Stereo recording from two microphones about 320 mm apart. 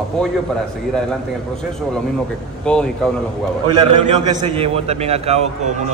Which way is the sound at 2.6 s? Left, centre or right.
Centre.